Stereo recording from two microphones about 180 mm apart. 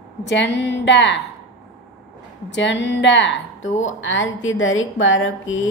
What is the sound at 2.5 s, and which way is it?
A woman's voice, 80° left.